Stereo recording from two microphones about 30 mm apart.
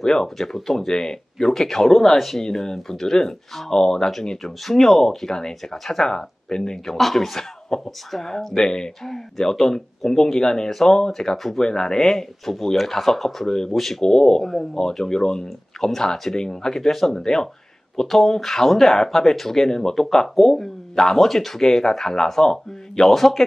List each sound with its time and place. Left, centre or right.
0.0 s speech: centre
2.1 s speech: centre
2.4 s speech: left
7.0 s speech: centre; by 10.7 s left
11.3 s speech: centre
11.6 s speech: left
18.0 s speech: centre
20.5 s a sound: centre
21.2 s speech: centre